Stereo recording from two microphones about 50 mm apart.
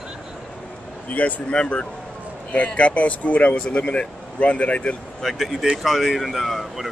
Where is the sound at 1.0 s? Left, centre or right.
Left.